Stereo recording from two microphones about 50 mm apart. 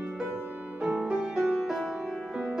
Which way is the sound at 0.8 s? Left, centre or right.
Centre.